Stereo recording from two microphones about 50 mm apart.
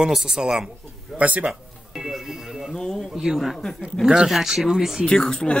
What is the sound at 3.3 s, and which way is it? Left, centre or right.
Speech, centre.